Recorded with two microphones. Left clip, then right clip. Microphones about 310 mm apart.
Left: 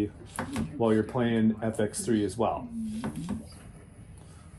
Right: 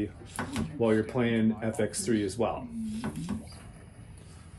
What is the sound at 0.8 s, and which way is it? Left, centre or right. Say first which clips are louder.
Speech: left 1 dB; centre.